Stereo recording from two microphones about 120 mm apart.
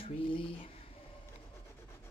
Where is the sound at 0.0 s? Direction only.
50° left (ahead or behind).